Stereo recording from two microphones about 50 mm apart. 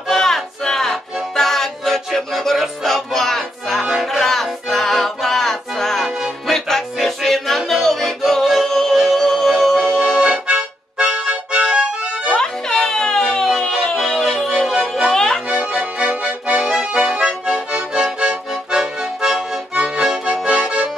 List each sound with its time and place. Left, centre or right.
0.1 s music: centre
10.1 s accordion: centre
12.3 s music: centre
14.7 s music: centre
15.0 s music: centre
15.5 s accordion: right
16.6 s accordion: centre